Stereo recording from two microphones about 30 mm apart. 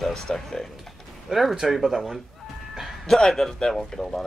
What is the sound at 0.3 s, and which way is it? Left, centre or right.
Speech, centre.